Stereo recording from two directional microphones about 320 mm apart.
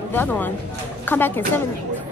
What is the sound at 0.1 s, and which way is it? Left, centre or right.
A woman's voice, centre.